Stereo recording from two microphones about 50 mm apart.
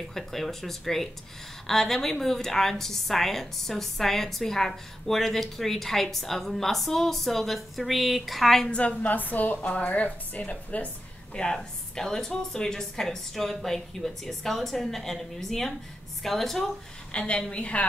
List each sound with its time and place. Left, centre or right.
0.1 s a woman's voice: centre
8.6 s speech: left
9.0 s speech: left
11.5 s a woman's voice: centre
17.1 s speech: centre